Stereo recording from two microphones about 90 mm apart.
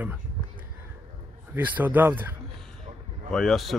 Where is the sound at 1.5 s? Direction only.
20° right (ahead or behind).